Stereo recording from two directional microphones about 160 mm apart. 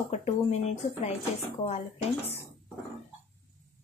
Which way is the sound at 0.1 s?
45° left (ahead or behind).